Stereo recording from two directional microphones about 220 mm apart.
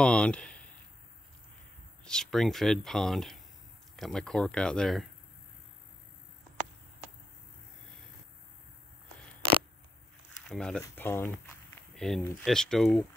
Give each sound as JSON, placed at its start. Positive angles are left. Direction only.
{"t": 0.0, "sound": "speech", "side_deg": 5}
{"t": 2.0, "sound": "speech", "side_deg": 0}
{"t": 10.5, "sound": "speech", "side_deg": 5}